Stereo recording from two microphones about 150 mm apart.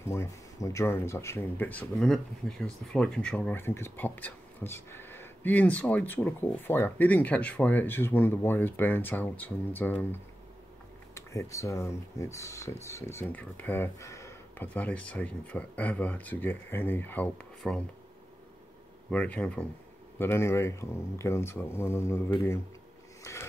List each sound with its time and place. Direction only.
0.0 s speech: 15° left (ahead or behind)
11.1 s speech: 20° left (ahead or behind)
14.7 s speech: 10° left (ahead or behind)
19.0 s speech: 10° left (ahead or behind)
23.3 s a sound: 20° left (ahead or behind)